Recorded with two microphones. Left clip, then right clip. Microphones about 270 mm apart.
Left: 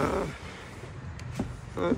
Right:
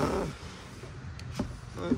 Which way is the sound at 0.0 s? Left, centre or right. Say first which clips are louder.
Left 2 dB; centre.